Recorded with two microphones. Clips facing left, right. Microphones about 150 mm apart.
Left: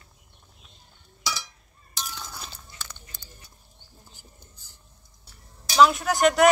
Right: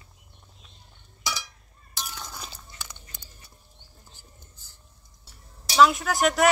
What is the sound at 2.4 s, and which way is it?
Biting, 15° right (ahead or behind).